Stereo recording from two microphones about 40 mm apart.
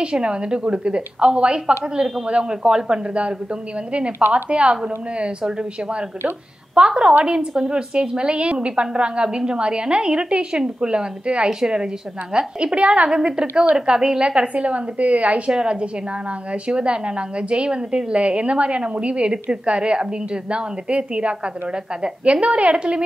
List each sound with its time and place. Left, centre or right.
0.0 s a woman's voice: right
2.0 s a woman's voice: centre
2.2 s a woman's voice: right
4.3 s a woman's voice: right
6.8 s a woman's voice: right